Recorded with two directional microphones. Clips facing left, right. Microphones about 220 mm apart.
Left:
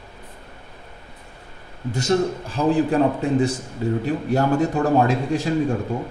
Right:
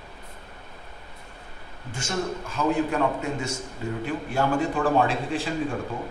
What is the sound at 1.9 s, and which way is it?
A man's voice, 35° left (ahead or behind).